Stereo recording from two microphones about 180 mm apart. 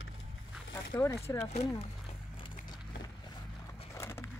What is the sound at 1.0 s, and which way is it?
Speech, 15° left (ahead or behind).